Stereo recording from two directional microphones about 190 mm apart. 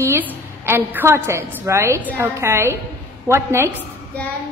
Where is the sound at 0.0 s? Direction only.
10° right (ahead or behind).